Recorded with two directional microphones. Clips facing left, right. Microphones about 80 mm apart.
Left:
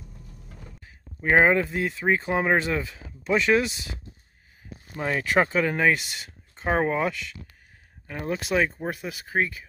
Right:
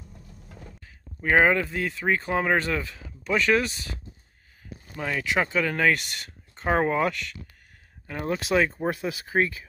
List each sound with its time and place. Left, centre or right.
0.8 s speech: centre
5.0 s speech: left
5.7 s speech: centre